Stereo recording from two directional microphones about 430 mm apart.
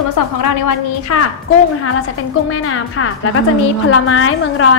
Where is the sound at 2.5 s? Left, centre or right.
Left.